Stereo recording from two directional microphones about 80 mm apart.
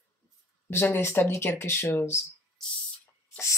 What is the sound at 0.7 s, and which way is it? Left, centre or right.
Speech, left.